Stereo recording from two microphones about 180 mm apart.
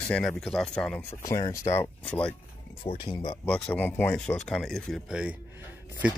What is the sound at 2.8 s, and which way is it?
Speech, 30° left (ahead or behind).